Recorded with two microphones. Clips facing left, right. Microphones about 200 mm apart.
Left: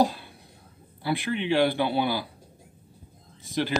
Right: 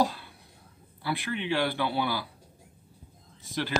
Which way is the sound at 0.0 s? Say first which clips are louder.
Left 4 dB; 20° left (ahead or behind).